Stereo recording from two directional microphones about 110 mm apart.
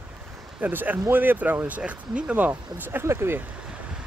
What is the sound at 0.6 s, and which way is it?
Speech, 15° right (ahead or behind).